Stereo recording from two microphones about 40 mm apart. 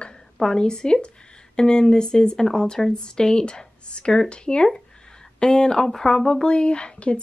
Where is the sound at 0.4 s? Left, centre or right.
Centre.